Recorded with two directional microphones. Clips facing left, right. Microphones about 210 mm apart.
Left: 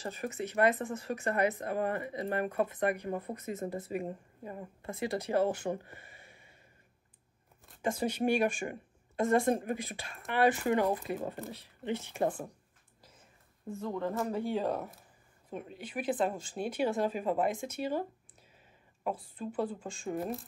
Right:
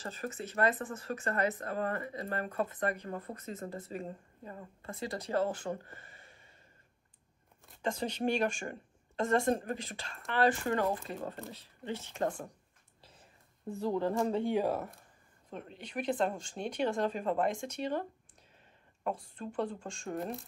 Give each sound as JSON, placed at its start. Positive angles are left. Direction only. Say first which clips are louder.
{"t": 0.0, "sound": "speech", "louder": "left 3 dB", "side_deg": 15}
{"t": 7.6, "sound": "speech", "louder": "left 3 dB", "side_deg": 5}
{"t": 13.7, "sound": "speech", "louder": "right 3 dB", "side_deg": -35}
{"t": 14.4, "sound": "speech", "louder": "right 2 dB", "side_deg": -15}
{"t": 14.7, "sound": "speech", "louder": "even", "side_deg": 0}
{"t": 19.0, "sound": "speech", "louder": "left 1 dB", "side_deg": 5}